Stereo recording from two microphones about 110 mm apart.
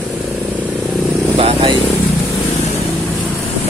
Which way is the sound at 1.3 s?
60° right (ahead or behind).